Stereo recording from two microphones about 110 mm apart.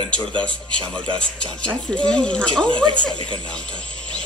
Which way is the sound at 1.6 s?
10° left (ahead or behind).